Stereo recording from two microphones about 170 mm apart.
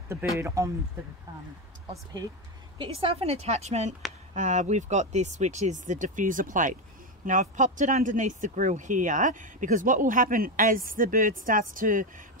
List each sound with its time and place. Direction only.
0.4 s speech: 15° right (ahead or behind)
2.8 s a woman's voice: 30° right (ahead or behind); by 12.3 s 50° right (ahead or behind)